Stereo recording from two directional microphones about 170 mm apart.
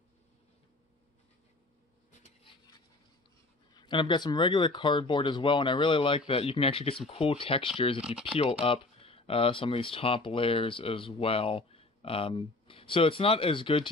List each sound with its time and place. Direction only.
3.7 s speech: 25° left (ahead or behind)